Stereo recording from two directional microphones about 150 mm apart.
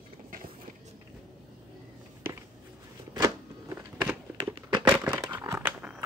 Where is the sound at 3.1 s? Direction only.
25° right (ahead or behind).